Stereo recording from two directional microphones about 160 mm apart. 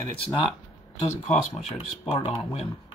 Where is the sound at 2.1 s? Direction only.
40° left (ahead or behind).